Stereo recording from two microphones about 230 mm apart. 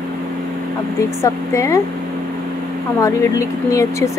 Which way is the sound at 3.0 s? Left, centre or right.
Centre.